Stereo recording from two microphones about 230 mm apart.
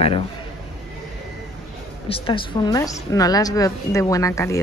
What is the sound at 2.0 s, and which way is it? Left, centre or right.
A woman's voice, left.